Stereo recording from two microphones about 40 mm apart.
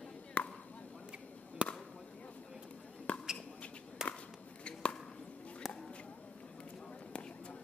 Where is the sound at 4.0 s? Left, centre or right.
Centre.